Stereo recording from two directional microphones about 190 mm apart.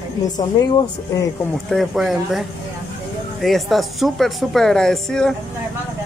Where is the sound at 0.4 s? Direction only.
20° left (ahead or behind).